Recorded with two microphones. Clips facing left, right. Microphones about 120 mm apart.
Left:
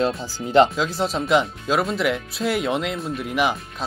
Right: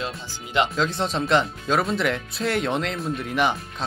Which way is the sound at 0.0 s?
35° left (ahead or behind).